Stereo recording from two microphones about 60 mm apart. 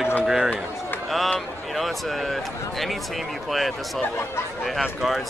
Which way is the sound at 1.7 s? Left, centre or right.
Centre.